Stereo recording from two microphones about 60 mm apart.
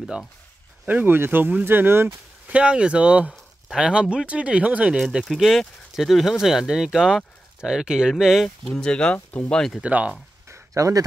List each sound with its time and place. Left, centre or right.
1.0 s speech: right
2.4 s speech: centre
5.2 s speech: centre
8.6 s speech: centre
9.8 s speech: right
10.5 s a sound: right